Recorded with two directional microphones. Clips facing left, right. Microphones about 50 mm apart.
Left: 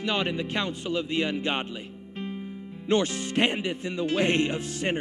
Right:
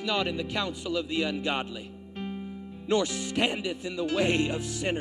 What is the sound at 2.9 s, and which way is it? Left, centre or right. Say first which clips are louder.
Speech: left 2 dB; left.